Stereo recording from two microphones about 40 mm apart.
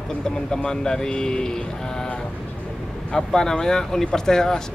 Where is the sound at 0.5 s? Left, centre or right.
Centre.